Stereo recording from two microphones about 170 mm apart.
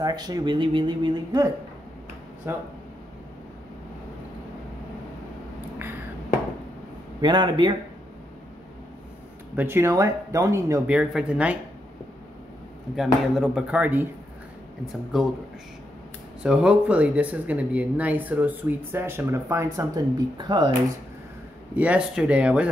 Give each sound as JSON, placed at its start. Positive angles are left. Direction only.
{"t": 0.0, "sound": "speech", "side_deg": -25}
{"t": 2.4, "sound": "speech", "side_deg": -15}
{"t": 7.2, "sound": "speech", "side_deg": -25}
{"t": 9.6, "sound": "speech", "side_deg": -15}
{"t": 10.9, "sound": "speech", "side_deg": -5}
{"t": 12.9, "sound": "speech", "side_deg": 0}
{"t": 16.4, "sound": "speech", "side_deg": -5}
{"t": 21.7, "sound": "speech", "side_deg": -10}